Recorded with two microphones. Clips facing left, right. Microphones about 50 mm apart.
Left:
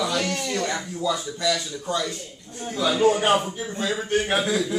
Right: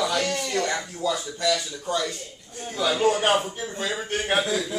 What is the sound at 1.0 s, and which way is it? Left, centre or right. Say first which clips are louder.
A man's voice: left 1 dB; centre.